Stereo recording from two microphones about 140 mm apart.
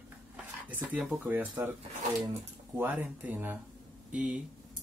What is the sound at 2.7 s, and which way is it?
Speech, 15° right (ahead or behind).